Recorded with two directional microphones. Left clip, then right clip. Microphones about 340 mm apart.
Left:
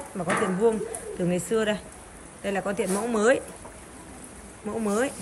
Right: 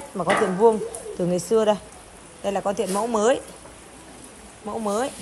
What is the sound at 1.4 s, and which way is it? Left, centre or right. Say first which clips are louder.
A woman's voice: right 7 dB; centre.